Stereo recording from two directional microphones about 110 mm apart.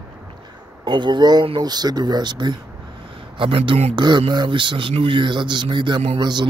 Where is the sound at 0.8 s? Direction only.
45° right (ahead or behind).